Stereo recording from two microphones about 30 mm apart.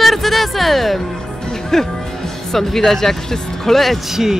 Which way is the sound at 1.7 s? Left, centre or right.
Centre.